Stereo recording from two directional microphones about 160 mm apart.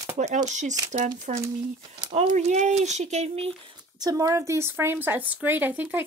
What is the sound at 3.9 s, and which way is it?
A woman's voice, 20° right (ahead or behind).